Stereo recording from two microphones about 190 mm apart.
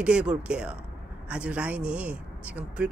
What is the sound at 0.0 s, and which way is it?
Speech, 5° right (ahead or behind).